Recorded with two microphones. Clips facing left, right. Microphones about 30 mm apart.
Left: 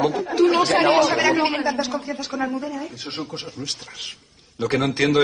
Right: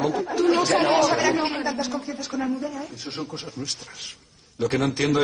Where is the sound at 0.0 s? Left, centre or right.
Left.